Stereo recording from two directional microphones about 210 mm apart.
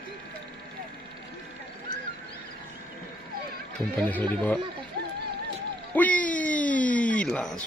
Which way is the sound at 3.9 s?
5° left (ahead or behind).